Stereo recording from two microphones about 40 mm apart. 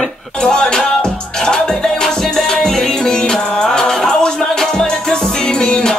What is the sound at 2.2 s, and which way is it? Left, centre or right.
Music, centre.